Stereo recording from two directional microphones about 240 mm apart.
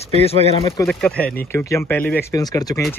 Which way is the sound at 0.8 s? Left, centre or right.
Centre.